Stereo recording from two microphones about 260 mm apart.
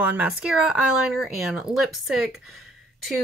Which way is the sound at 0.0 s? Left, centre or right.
Centre.